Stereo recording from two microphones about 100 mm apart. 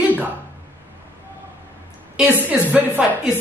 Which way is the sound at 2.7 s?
15° right (ahead or behind).